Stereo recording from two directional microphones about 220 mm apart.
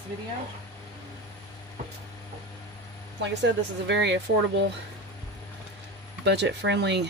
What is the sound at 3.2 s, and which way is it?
Speech, 55° right (ahead or behind).